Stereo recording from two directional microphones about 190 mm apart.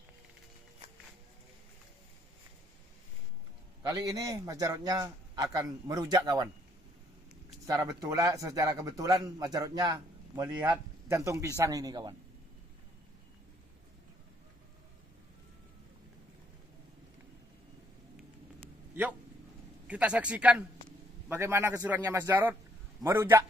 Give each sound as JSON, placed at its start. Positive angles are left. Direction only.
{"t": 3.9, "sound": "a man's voice", "side_deg": -20}
{"t": 7.6, "sound": "a man's voice", "side_deg": -15}
{"t": 19.9, "sound": "a man's voice", "side_deg": -5}